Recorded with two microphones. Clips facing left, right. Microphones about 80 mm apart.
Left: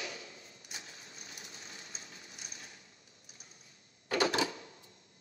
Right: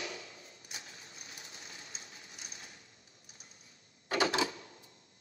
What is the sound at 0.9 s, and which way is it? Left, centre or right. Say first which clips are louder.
Rain: even; left.